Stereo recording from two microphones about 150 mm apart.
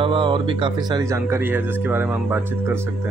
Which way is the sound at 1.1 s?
15° right (ahead or behind).